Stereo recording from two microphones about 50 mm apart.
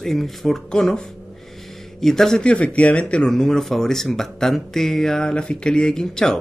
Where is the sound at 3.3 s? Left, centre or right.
Centre.